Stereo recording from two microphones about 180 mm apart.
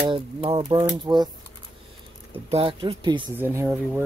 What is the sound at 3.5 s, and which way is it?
Speech, 15° right (ahead or behind).